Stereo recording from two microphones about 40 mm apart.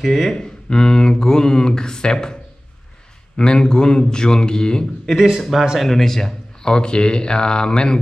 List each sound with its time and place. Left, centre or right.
0.0 s speech: centre
3.3 s speech: left
5.0 s speech: centre; by 8.0 s left